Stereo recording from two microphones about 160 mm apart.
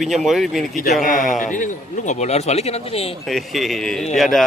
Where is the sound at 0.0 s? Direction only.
Centre (ahead or behind).